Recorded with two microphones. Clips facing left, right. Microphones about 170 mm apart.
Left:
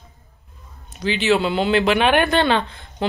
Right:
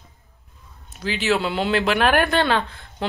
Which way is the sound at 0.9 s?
Centre (ahead or behind).